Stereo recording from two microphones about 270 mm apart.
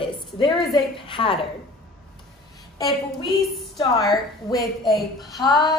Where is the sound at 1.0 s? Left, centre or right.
Centre.